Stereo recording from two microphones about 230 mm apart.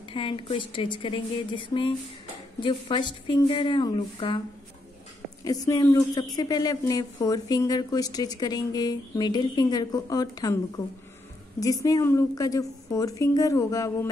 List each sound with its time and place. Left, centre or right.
0.1 s a woman's voice: left
5.4 s speech: centre
11.6 s speech: centre